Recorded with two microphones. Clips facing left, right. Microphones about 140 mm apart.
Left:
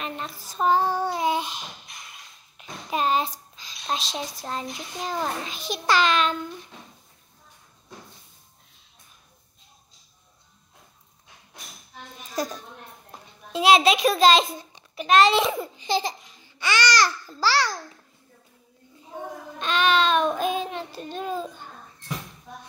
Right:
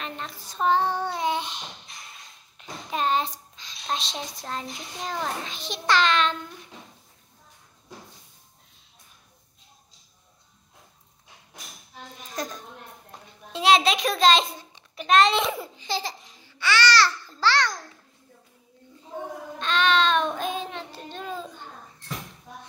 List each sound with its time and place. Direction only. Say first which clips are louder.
0.0 s child singing: left 2 dB; 5° left (ahead or behind)
2.6 s a child's voice: left 2 dB; 10° left (ahead or behind)
13.5 s a child's voice: left 2 dB; 5° left (ahead or behind)
15.8 s babbling: left 7 dB; 15° left (ahead or behind)
17.4 s a child's voice: even; 10° left (ahead or behind)
19.6 s child singing: left 1 dB; 10° left (ahead or behind)